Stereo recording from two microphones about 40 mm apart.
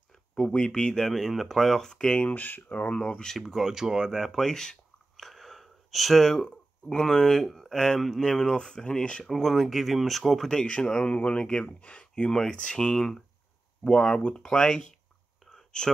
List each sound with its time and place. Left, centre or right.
0.3 s speech: left
1.0 s speech: centre
2.3 s speech: left
3.0 s speech: centre
3.3 s speech: centre
4.2 s speech: centre
5.1 s a sound: centre
6.3 s speech: centre
9.2 s speech: centre
10.5 s speech: left
12.3 s speech: centre
12.9 s speech: centre
13.8 s speech: left
15.5 s whispering: centre